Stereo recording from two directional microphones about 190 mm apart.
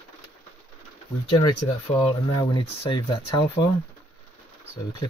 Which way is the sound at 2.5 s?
25° left (ahead or behind).